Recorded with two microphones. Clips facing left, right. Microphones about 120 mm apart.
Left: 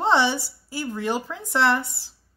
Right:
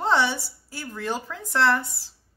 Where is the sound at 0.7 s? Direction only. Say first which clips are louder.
Left 4 dB; 15° left (ahead or behind).